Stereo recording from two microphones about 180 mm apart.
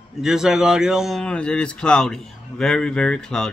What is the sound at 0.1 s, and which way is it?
Speech, centre (ahead or behind).